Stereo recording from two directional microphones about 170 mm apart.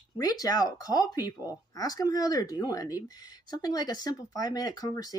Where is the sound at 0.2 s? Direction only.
20° left (ahead or behind).